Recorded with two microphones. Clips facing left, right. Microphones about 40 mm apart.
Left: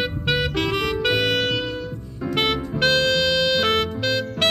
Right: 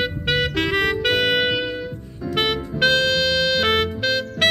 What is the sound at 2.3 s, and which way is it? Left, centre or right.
Music, centre.